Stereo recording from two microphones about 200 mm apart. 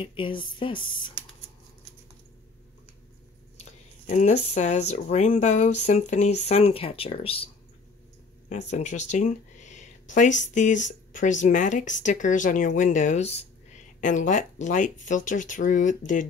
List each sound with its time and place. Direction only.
0.0 s speech: 25° left (ahead or behind)
4.1 s speech: 35° left (ahead or behind)
8.5 s speech: 35° left (ahead or behind)